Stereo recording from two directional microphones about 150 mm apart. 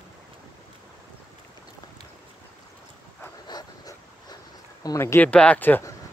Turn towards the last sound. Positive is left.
turn(degrees=10)  # may be behind; listen again after turning